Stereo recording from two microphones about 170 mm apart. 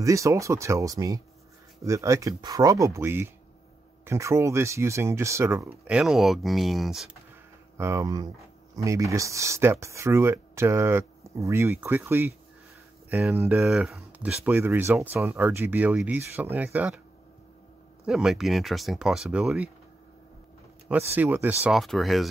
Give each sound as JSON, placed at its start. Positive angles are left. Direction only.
{"t": 0.0, "sound": "speech", "side_deg": -20}
{"t": 7.7, "sound": "speech", "side_deg": -15}
{"t": 13.7, "sound": "speech", "side_deg": 0}
{"t": 18.0, "sound": "speech", "side_deg": -5}
{"t": 21.1, "sound": "speech", "side_deg": -10}
{"t": 21.6, "sound": "speech", "side_deg": 0}